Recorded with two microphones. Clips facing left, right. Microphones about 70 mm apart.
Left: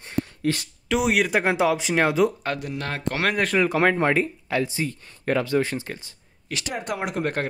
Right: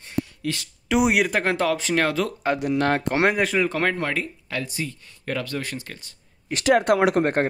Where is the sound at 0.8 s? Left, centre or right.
Centre.